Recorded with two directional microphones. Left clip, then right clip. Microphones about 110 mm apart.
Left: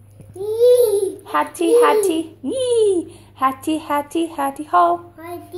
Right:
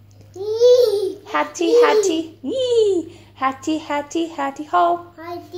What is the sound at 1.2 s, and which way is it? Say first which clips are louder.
A child's voice: left 1 dB; 25° left (ahead or behind).